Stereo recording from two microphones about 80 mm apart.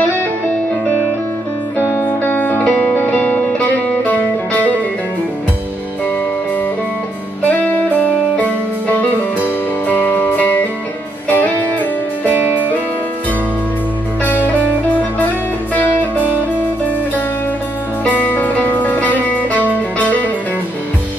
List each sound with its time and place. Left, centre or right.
1.8 s music: left
7.4 s music: centre
12.3 s music: right
14.2 s music: left
18.0 s music: left